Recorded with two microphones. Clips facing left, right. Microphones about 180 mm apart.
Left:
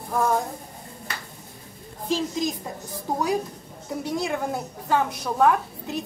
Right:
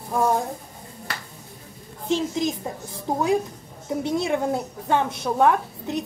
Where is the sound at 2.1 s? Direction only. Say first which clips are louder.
Right 2 dB; 20° right (ahead or behind).